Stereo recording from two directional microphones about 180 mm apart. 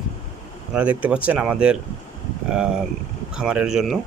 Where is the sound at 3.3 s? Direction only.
5° right (ahead or behind).